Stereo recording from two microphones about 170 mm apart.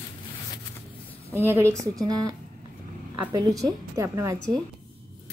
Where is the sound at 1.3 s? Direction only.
15° right (ahead or behind).